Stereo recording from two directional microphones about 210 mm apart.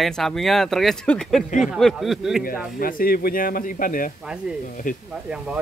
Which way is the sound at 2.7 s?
45° left (ahead or behind).